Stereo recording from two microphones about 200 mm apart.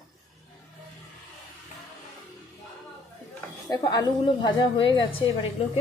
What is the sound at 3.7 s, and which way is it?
A woman's voice, 20° left (ahead or behind).